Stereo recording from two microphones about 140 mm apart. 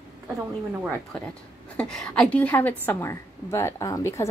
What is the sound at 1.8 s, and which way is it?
A woman's voice, 5° left (ahead or behind).